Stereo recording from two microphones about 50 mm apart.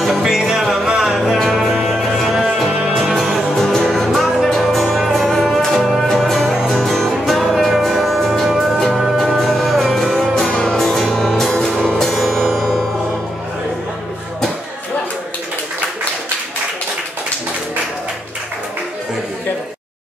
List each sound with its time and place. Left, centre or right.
0.0 s music: centre
2.9 s music: centre
10.5 s music: centre
10.8 s music: centre
12.2 s music: centre